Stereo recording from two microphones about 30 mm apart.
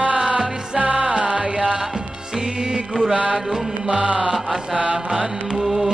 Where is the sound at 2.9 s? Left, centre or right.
Centre.